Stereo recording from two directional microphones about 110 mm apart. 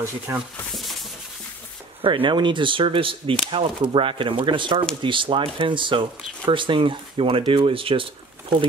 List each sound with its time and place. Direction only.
2.0 s speech: 50° right (ahead or behind)